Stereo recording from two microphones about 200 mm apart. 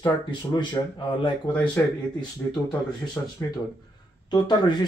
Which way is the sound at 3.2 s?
10° left (ahead or behind).